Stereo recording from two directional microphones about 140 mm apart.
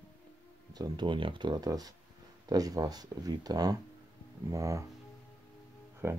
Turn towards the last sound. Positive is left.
turn(degrees=-20)  # may be behind; listen again after turning